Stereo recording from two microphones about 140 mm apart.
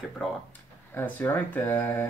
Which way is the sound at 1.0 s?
15° left (ahead or behind).